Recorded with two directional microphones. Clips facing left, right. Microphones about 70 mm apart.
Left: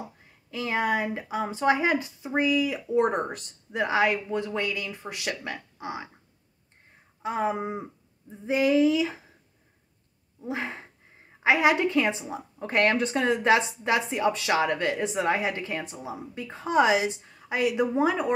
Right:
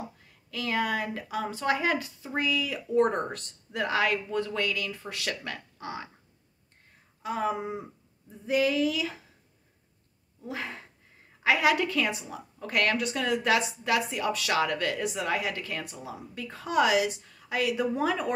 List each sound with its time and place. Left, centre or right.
0.2 s a woman's voice: left
7.2 s a sound: left
10.4 s a woman's voice: left